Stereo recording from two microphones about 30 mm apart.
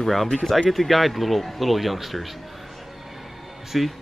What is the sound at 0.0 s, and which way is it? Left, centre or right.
Speech, centre.